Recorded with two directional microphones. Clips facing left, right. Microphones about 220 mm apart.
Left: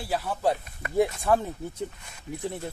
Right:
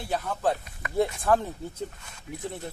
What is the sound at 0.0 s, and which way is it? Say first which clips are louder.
Speech: left 1 dB; 5° left (ahead or behind).